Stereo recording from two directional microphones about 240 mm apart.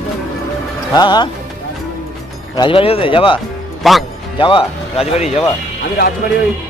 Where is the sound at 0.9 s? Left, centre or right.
Centre.